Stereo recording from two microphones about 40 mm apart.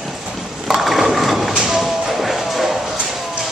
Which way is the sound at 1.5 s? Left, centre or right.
Centre.